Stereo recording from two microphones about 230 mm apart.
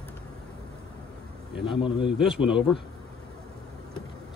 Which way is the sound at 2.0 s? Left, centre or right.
Centre.